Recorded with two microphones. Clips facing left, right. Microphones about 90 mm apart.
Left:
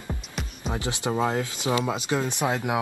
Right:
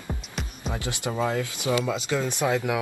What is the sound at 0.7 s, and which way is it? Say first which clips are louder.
Speech: left 2 dB; 20° left (ahead or behind).